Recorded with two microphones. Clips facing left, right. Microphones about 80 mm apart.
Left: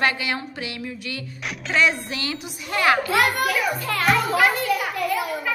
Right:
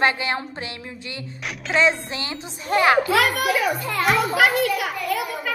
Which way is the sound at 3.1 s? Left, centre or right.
Right.